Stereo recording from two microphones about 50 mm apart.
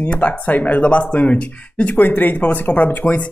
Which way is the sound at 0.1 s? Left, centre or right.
Left.